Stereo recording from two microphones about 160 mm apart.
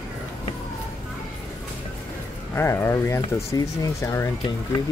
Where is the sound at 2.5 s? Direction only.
15° left (ahead or behind).